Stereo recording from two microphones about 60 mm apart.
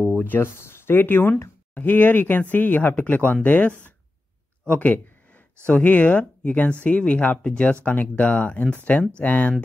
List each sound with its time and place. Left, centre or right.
0.2 s speech: left
4.6 s a sound: left
5.7 s speech: left